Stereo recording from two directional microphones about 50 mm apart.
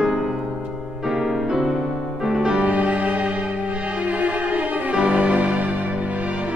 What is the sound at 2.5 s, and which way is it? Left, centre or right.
Music, right.